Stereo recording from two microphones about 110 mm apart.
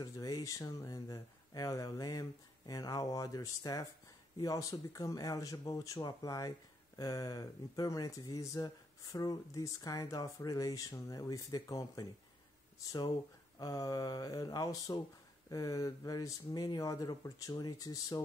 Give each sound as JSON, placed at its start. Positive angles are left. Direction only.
{"t": 0.0, "sound": "speech", "side_deg": 35}
{"t": 13.6, "sound": "speech", "side_deg": 35}